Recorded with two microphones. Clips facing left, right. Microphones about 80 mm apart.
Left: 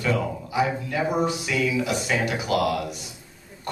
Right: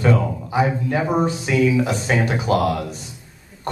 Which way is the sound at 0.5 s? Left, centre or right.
Right.